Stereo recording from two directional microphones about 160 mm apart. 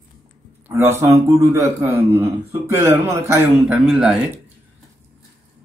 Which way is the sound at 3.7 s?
5° right (ahead or behind).